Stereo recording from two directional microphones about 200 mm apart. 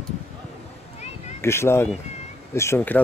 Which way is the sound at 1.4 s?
10° left (ahead or behind).